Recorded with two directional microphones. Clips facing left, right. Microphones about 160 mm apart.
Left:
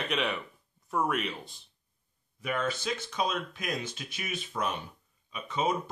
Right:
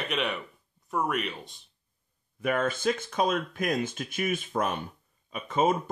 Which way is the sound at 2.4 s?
50° right (ahead or behind).